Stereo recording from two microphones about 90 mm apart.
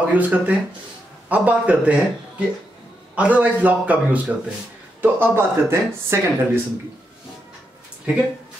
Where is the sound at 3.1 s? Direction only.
15° right (ahead or behind).